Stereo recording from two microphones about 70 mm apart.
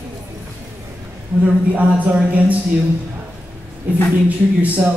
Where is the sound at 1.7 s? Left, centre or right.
Right.